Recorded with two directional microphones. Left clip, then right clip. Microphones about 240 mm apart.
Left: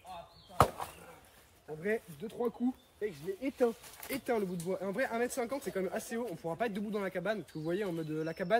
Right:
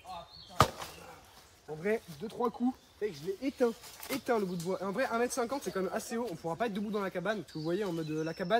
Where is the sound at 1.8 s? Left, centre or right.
Centre.